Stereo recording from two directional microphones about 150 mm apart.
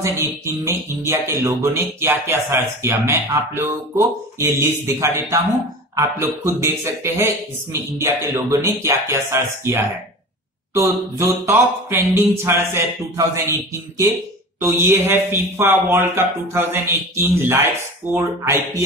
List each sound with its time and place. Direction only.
0.0 s a man's voice: 20° right (ahead or behind)